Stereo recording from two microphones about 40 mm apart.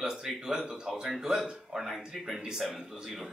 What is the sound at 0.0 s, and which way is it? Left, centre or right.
A man's voice, centre.